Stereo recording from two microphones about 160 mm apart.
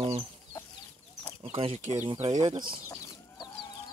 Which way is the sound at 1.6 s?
35° right (ahead or behind).